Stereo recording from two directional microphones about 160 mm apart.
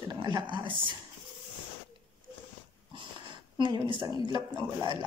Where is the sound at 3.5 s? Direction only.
30° right (ahead or behind).